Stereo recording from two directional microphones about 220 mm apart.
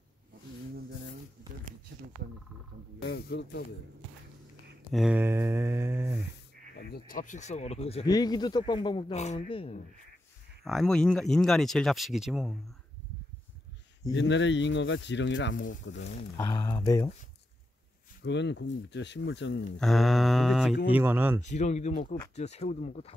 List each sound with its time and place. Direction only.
3.0 s speech: 50° left (ahead or behind)
4.9 s mantra: 5° right (ahead or behind)
7.1 s speech: 35° left (ahead or behind)
10.6 s speech: centre (ahead or behind)
14.1 s speech: 55° left (ahead or behind)
16.3 s speech: 15° left (ahead or behind)
18.2 s speech: 55° left (ahead or behind)
19.8 s speech: centre (ahead or behind)
21.4 s speech: 30° left (ahead or behind)